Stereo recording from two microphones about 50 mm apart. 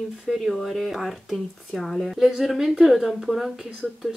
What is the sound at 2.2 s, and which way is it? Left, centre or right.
Speech, centre.